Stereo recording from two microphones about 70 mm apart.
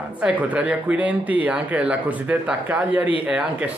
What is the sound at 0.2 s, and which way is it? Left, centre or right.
Speech, centre.